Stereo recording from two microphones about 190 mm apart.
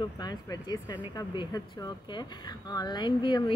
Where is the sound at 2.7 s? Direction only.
20° left (ahead or behind).